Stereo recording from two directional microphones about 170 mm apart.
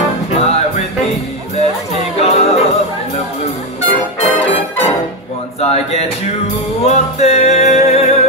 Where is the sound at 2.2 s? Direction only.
35° left (ahead or behind).